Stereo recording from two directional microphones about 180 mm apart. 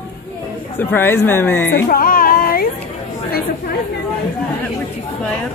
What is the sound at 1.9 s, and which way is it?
Music, 50° left (ahead or behind).